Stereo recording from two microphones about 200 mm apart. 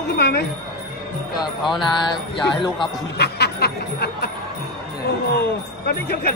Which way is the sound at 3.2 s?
55° left (ahead or behind).